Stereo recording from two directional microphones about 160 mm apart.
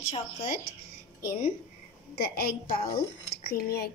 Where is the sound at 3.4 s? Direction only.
75° left (ahead or behind).